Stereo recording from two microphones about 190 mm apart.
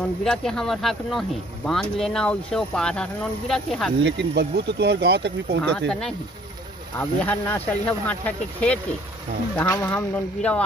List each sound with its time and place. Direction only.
0.2 s speech: centre (ahead or behind)
4.0 s speech: 65° right (ahead or behind)
5.9 s speech: 5° left (ahead or behind)